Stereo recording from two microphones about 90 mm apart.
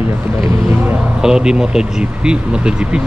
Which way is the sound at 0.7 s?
20° right (ahead or behind).